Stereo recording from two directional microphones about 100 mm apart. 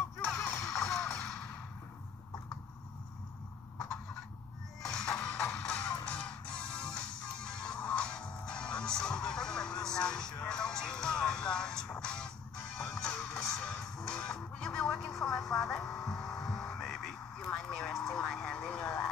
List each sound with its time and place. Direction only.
0.4 s music: 35° left (ahead or behind)
0.7 s music: 5° left (ahead or behind)
4.9 s music: 10° left (ahead or behind)
15.6 s vehicle: 5° left (ahead or behind)